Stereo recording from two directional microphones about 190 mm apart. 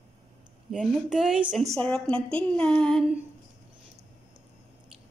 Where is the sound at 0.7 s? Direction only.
Centre (ahead or behind).